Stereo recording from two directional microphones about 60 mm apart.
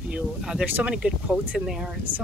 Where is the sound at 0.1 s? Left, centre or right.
Centre.